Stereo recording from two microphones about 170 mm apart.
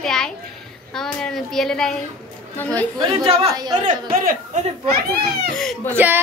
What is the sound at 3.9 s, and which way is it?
Speech, 45° right (ahead or behind).